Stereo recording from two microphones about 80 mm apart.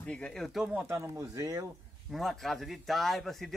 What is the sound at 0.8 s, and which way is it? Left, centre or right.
Speech, right.